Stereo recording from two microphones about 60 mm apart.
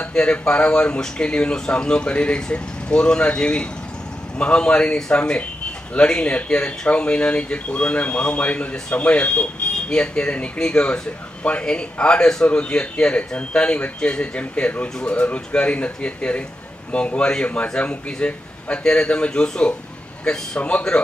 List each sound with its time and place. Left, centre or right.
0.0 s speech: centre